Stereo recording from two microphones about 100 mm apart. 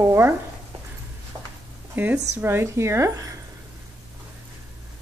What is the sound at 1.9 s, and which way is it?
Speech, 20° right (ahead or behind).